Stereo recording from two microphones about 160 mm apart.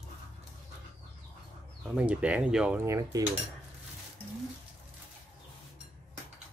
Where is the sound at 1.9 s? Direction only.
10° right (ahead or behind).